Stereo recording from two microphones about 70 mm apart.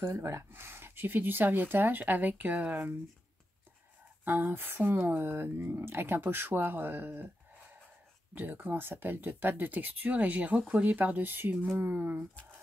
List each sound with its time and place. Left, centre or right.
0.0 s speech: right
4.2 s speech: right
8.4 s speech: right